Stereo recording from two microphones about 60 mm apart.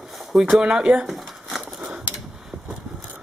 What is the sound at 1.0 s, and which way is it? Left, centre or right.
Crumpling, centre.